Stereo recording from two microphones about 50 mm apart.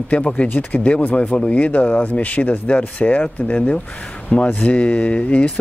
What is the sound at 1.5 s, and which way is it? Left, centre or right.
Speech, left.